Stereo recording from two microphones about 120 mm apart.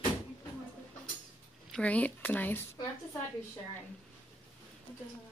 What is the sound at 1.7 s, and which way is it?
Speech, 10° left (ahead or behind).